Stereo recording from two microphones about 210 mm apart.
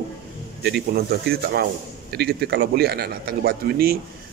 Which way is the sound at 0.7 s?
50° right (ahead or behind).